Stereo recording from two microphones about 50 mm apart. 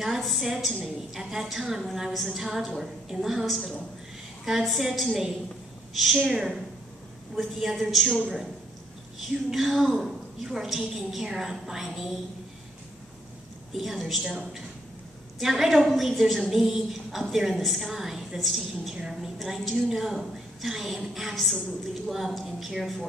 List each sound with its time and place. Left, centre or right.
0.0 s a woman's voice: centre
9.3 s a woman's voice: centre
13.7 s a woman's voice: centre